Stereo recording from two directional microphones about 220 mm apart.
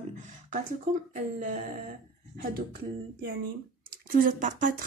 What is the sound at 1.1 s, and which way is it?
Speech, 35° right (ahead or behind).